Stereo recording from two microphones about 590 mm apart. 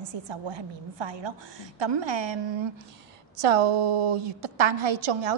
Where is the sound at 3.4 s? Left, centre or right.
Right.